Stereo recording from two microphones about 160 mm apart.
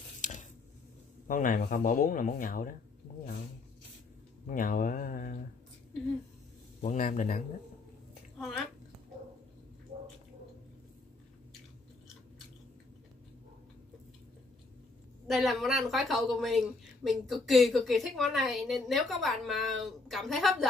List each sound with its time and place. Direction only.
0.2 s a sound: 50° left (ahead or behind)
1.2 s speech: 60° left (ahead or behind)
4.5 s speech: 60° left (ahead or behind)
6.8 s speech: 50° left (ahead or behind)
15.2 s speech: centre (ahead or behind)